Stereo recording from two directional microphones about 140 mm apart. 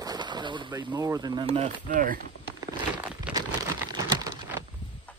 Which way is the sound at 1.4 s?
45° right (ahead or behind).